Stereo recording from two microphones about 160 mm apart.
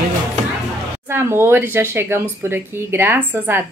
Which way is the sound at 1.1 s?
15° right (ahead or behind).